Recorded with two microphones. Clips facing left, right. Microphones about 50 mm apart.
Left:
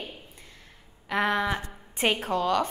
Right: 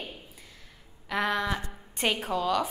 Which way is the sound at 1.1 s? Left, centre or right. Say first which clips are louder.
Left 2 dB; centre.